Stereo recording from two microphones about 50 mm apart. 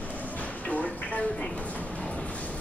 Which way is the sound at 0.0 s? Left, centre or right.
Left.